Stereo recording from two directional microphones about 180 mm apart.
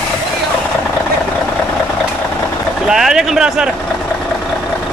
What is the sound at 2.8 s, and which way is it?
Speech, 5° right (ahead or behind).